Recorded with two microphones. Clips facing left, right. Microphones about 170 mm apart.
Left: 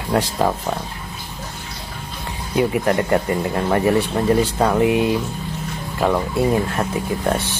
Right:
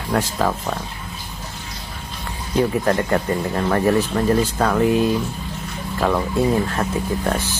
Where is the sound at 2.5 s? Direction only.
20° left (ahead or behind).